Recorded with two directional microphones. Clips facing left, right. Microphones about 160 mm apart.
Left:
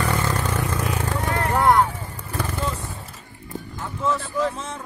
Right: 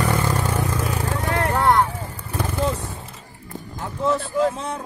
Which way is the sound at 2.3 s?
10° right (ahead or behind).